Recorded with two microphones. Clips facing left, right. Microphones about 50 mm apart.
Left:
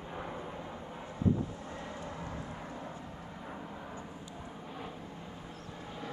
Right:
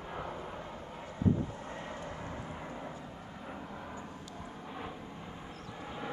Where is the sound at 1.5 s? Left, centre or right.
Right.